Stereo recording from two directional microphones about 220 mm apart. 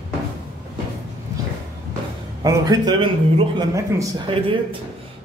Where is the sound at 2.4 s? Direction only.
15° right (ahead or behind).